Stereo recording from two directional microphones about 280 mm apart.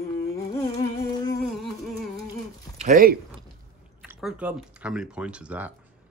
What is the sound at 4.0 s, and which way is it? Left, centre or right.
Speech, centre.